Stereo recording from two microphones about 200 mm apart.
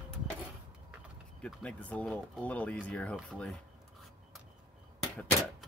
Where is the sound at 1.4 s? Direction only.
5° left (ahead or behind).